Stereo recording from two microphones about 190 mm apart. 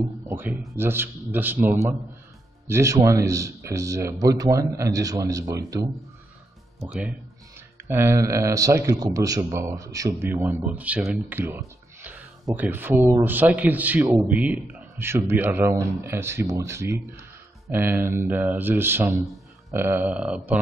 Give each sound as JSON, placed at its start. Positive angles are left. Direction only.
{"t": 0.3, "sound": "a man's voice", "side_deg": -10}
{"t": 6.9, "sound": "a man's voice", "side_deg": -5}